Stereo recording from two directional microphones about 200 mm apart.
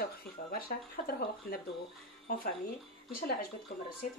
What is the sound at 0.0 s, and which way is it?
Speech, 45° left (ahead or behind).